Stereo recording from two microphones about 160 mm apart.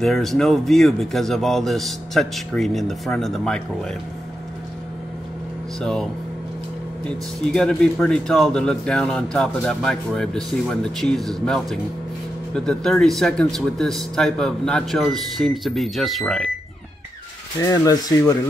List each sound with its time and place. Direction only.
0.0 s speech: centre (ahead or behind)
5.8 s speech: 5° left (ahead or behind)
7.1 s speech: 5° left (ahead or behind)
17.6 s speech: 20° left (ahead or behind)